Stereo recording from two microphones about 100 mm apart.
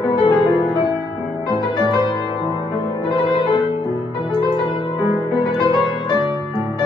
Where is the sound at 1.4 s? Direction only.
45° left (ahead or behind).